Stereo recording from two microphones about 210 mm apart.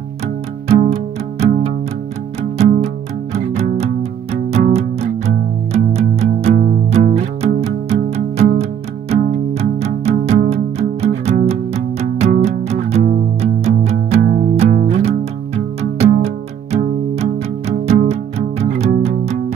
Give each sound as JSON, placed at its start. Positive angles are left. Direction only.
{"t": 0.7, "sound": "music", "side_deg": -30}